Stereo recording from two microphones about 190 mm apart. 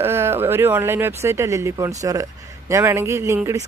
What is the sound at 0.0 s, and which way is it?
Speech, 10° right (ahead or behind).